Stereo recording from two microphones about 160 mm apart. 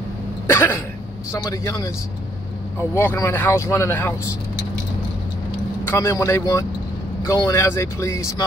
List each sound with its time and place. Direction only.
0.5 s speech: 15° left (ahead or behind)
5.9 s speech: 15° left (ahead or behind)